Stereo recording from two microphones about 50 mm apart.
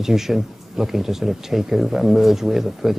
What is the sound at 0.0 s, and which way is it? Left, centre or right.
Speech, centre.